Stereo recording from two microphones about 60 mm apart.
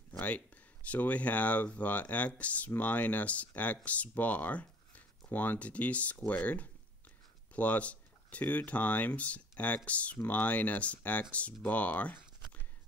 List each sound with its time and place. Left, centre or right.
0.8 s speech: left